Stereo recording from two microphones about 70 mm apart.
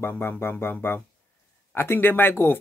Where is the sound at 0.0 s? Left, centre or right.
Left.